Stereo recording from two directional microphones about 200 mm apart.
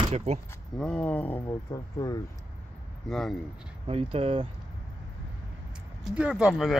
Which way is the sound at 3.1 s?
Centre (ahead or behind).